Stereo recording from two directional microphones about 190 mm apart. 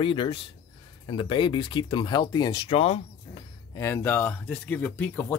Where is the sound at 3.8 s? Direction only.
15° left (ahead or behind).